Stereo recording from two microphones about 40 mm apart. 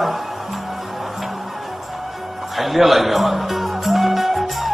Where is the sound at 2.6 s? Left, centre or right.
Centre.